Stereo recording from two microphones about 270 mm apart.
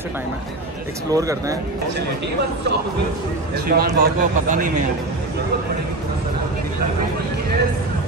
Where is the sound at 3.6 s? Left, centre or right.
Right.